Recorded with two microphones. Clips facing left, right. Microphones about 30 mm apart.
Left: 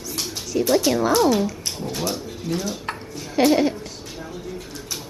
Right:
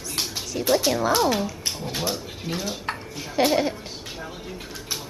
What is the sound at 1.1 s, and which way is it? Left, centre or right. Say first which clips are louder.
Speech: left 4 dB; centre.